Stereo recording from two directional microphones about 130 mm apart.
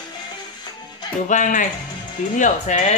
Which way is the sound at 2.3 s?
70° left (ahead or behind).